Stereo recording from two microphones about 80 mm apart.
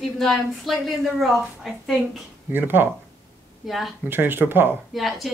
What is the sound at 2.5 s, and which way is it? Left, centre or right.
Speech, right.